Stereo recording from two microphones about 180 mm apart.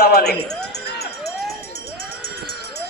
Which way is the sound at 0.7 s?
65° left (ahead or behind).